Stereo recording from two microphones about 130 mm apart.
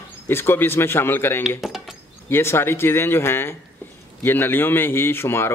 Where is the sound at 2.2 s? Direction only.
20° left (ahead or behind).